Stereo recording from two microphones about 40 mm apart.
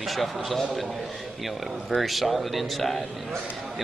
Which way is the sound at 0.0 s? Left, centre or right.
Centre.